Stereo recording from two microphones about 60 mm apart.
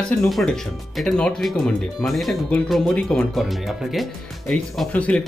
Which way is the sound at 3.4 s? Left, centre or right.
Centre.